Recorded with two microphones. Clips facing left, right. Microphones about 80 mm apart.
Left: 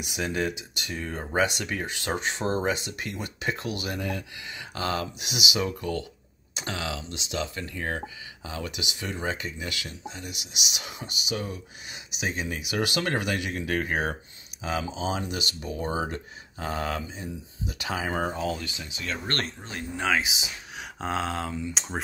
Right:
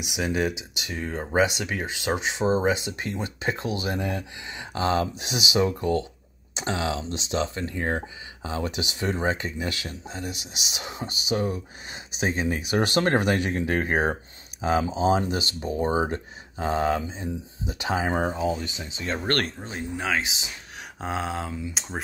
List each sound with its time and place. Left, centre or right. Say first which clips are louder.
0.0 s speech: right 3 dB; centre; by 19.3 s right
20.0 s speech: left 2 dB; centre
21.0 s speech: even; centre